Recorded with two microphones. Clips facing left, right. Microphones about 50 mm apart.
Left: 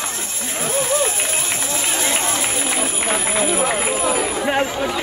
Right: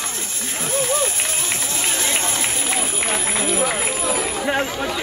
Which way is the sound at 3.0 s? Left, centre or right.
Centre.